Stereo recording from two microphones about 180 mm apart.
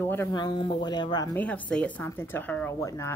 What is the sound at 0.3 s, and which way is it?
Speech, 25° left (ahead or behind).